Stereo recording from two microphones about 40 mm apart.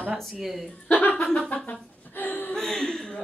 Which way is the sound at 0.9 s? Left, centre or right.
Left.